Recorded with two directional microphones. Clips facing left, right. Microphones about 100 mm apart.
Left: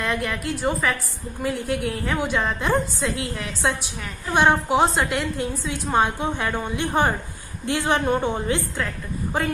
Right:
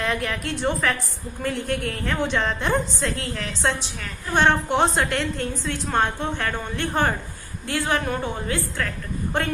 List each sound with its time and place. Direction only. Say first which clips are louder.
0.0 s a woman's voice: even; centre (ahead or behind); by 8.8 s 20° left (ahead or behind)
9.3 s a woman's voice: left 1 dB; 5° left (ahead or behind)